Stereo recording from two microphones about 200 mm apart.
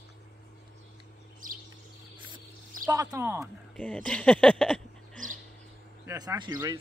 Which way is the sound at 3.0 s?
10° right (ahead or behind).